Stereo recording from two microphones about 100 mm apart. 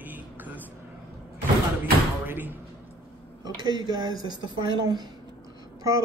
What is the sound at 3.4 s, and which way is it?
Speech, 40° right (ahead or behind).